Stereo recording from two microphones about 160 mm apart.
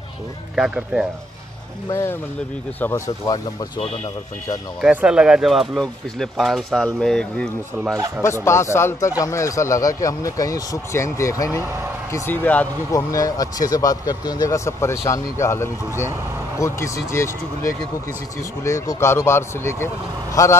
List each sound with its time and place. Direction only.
0.6 s speech: 5° right (ahead or behind)
1.9 s speech: 15° left (ahead or behind)
4.8 s speech: 5° right (ahead or behind)
8.2 s speech: 15° left (ahead or behind)
12.9 s speech: 20° left (ahead or behind)